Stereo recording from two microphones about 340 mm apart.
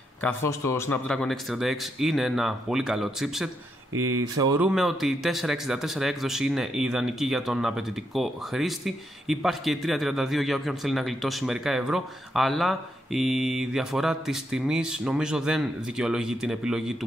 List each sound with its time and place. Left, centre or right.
0.2 s speech: centre